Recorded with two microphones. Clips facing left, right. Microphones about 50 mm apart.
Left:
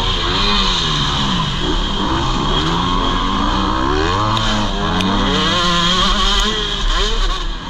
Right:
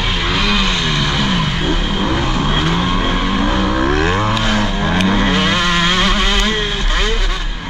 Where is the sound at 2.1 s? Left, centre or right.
Right.